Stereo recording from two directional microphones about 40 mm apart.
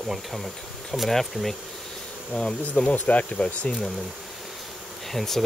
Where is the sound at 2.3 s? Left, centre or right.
Centre.